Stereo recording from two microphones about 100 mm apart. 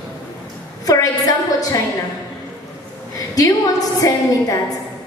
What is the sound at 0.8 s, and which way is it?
Speech, 35° left (ahead or behind).